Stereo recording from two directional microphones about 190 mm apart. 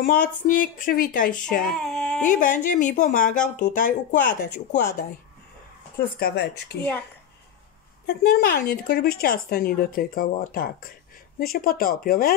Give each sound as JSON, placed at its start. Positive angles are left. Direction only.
{"t": 0.5, "sound": "a woman's voice", "side_deg": 45}
{"t": 1.8, "sound": "speech", "side_deg": 0}
{"t": 2.2, "sound": "a woman's voice", "side_deg": 45}
{"t": 5.9, "sound": "speech", "side_deg": 55}
{"t": 8.1, "sound": "a woman's voice", "side_deg": 55}